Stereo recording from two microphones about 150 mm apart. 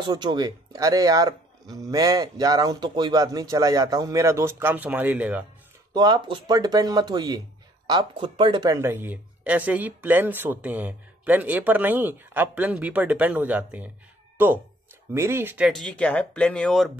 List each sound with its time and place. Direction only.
0.0 s a man's voice: 30° right (ahead or behind); by 5.4 s 10° right (ahead or behind)
5.9 s a man's voice: 30° right (ahead or behind)
8.7 s speech: 15° right (ahead or behind)
15.7 s speech: 5° left (ahead or behind)